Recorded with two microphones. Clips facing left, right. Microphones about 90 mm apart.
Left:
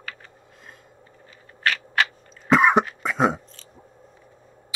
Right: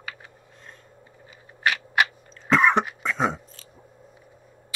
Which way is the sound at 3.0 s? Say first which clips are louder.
Left 3 dB; 5° left (ahead or behind).